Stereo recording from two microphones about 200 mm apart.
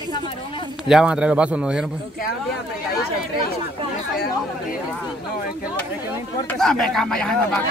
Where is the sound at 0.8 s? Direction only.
5° right (ahead or behind).